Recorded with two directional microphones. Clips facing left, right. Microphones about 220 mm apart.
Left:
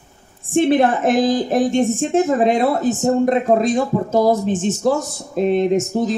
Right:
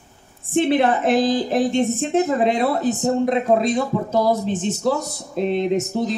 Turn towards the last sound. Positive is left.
turn(degrees=50)  # may be behind; listen again after turning